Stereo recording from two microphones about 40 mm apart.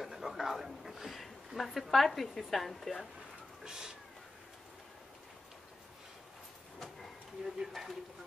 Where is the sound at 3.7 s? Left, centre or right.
Centre.